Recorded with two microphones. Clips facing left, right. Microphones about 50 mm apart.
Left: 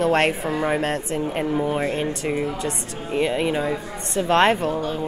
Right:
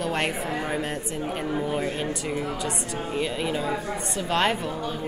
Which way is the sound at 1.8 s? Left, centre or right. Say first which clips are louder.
Left 4 dB; left.